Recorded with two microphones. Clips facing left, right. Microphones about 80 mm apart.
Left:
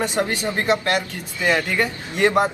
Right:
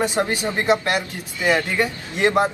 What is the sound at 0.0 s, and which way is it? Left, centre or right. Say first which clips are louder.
A man's voice: right 1 dB; centre.